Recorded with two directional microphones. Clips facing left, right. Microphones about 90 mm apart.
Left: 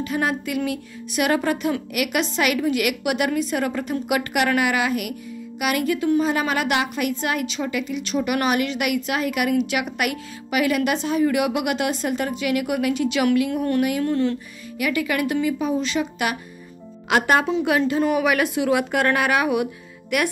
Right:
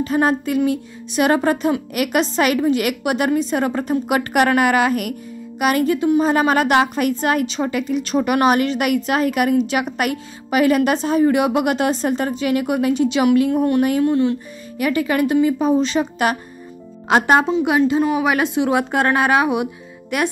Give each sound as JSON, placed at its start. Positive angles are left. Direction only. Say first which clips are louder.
{"t": 0.0, "sound": "a woman's voice", "louder": "right 6 dB", "side_deg": -35}
{"t": 14.0, "sound": "speech", "louder": "right 4 dB", "side_deg": -15}
{"t": 14.8, "sound": "a woman's voice", "louder": "right 5 dB", "side_deg": -35}